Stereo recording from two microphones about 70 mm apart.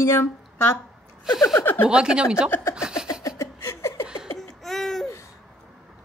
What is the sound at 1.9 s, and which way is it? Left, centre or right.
Speech, centre.